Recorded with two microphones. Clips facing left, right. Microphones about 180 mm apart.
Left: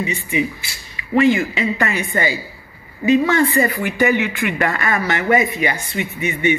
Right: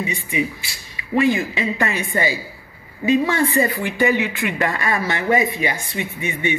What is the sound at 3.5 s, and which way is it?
Speech, 20° right (ahead or behind).